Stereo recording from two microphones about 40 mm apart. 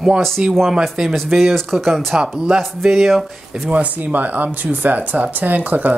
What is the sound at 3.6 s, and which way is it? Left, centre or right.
Speech, right.